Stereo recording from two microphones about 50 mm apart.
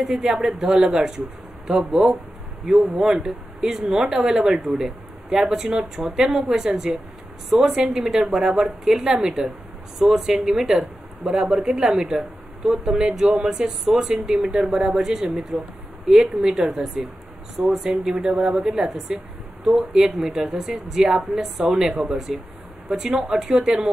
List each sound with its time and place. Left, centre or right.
0.0 s speech: centre
12.0 s speech: centre
12.6 s speech: centre
12.9 s speech: centre
14.7 s speech: right
15.0 s speech: centre